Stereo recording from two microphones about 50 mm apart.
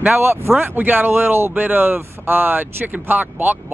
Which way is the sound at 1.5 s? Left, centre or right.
Right.